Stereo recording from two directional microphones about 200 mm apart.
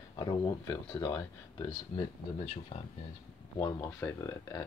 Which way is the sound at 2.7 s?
30° left (ahead or behind).